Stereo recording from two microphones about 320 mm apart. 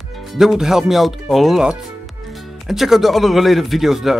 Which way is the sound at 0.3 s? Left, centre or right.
Centre.